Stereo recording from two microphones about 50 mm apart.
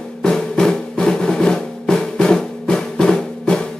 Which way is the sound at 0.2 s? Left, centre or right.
Centre.